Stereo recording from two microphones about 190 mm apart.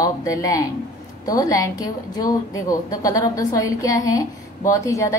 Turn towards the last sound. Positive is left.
turn(degrees=15)  # may be behind; listen again after turning